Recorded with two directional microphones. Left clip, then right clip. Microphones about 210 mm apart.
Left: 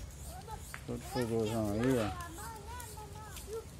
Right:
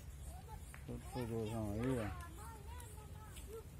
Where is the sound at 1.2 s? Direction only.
45° left (ahead or behind).